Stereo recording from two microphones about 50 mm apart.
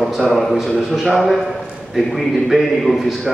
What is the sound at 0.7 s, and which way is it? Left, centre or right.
A man's voice, centre.